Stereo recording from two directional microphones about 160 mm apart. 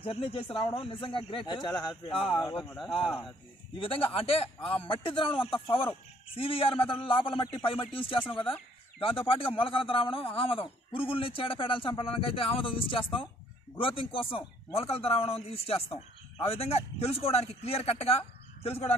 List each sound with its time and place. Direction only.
0.0 s speech: 35° left (ahead or behind)
3.7 s speech: 35° left (ahead or behind)